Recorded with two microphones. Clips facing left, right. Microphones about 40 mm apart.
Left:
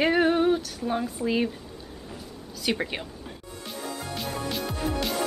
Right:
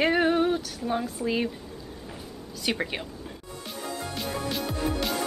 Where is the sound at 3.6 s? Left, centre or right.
Centre.